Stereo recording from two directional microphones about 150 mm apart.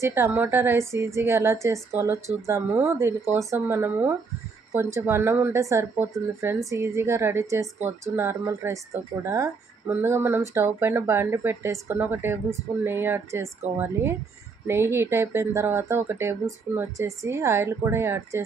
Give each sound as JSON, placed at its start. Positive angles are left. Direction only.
{"t": 0.0, "sound": "speech", "side_deg": -15}